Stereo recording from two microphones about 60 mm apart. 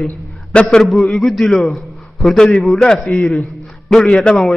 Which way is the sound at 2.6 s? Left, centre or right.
Centre.